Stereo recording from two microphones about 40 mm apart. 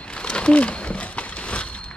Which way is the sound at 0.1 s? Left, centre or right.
Left.